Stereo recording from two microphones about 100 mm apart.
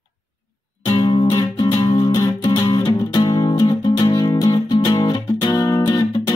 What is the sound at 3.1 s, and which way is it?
Music, 40° left (ahead or behind).